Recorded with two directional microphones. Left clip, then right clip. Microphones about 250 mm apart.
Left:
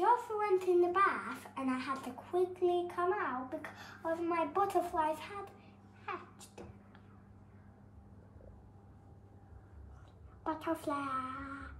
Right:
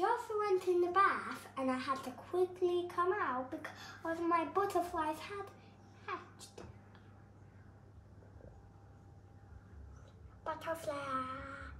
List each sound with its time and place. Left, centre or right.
0.0 s a child's voice: centre
10.6 s a woman's voice: left